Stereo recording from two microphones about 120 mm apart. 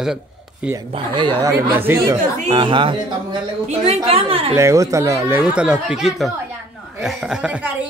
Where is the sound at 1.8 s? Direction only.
20° right (ahead or behind).